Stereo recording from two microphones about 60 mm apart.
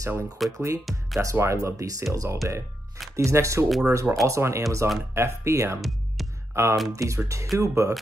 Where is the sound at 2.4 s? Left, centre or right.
Right.